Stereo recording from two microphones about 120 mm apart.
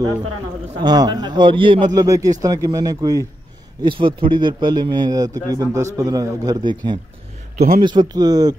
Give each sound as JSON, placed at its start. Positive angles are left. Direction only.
{"t": 0.7, "sound": "a man's voice", "side_deg": -35}
{"t": 2.0, "sound": "speech", "side_deg": -25}
{"t": 3.8, "sound": "a man's voice", "side_deg": -40}